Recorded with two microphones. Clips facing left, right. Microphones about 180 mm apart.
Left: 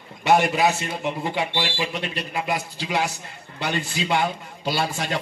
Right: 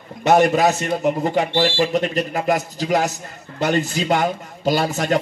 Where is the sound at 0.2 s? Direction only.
45° right (ahead or behind).